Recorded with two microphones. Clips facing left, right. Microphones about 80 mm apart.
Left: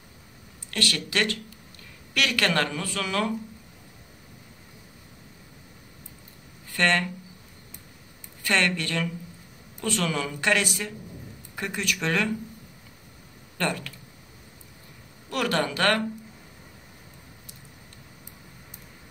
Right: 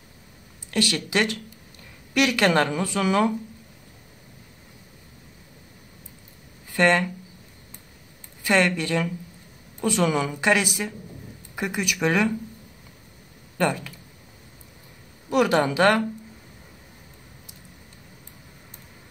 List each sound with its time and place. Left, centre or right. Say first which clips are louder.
0.7 s speech: right 4 dB; centre
6.8 s speech: right 4 dB; centre
8.5 s speech: right 4 dB; centre
13.6 s speech: right 5 dB; centre
15.2 s speech: right 6 dB; centre